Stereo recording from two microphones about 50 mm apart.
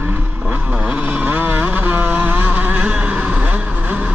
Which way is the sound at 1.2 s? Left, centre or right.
Right.